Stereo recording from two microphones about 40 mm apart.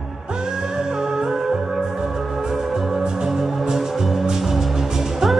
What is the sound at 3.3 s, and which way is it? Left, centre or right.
Music, centre.